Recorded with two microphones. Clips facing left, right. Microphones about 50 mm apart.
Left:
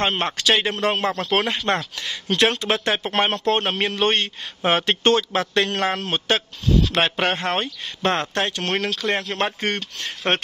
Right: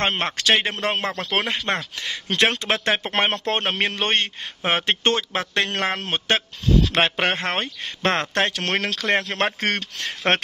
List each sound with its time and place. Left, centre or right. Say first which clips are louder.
0.0 s a man's voice: left 1 dB; right
1.3 s speech: left 2 dB; right
2.0 s a man's voice: left 1 dB; right
4.6 s a man's voice: left 3 dB; right
8.6 s speech: even; right